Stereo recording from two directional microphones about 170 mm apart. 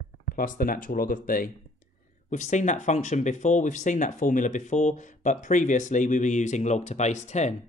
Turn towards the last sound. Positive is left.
turn(degrees=45)  # may be behind; listen again after turning